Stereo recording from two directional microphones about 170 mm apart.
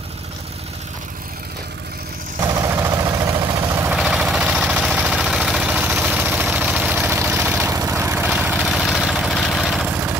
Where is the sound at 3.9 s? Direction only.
5° right (ahead or behind).